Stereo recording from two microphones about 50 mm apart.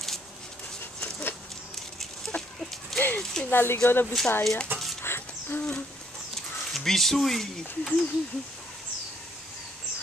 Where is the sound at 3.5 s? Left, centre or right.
Left.